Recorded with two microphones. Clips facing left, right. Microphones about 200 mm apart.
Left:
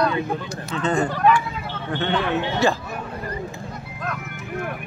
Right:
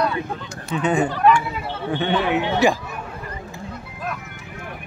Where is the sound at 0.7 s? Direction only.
15° right (ahead or behind).